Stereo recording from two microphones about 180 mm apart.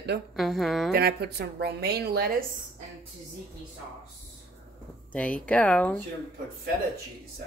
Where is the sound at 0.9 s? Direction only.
60° right (ahead or behind).